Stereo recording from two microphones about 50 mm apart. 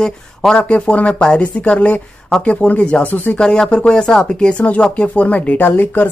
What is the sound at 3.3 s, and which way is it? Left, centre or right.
Speech, centre.